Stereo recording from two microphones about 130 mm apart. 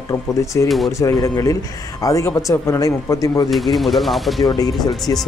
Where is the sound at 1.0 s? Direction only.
25° left (ahead or behind).